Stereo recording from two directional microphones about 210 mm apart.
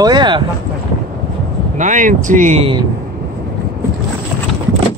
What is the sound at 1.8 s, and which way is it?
Speech, 40° right (ahead or behind).